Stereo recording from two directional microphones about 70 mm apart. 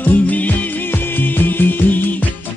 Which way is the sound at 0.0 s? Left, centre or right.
Left.